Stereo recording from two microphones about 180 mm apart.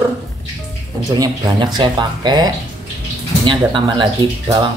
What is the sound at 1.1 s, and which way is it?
A woman's voice, 25° right (ahead or behind).